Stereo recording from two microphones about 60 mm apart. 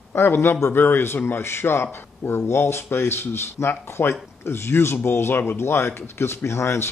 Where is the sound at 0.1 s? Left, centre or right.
Left.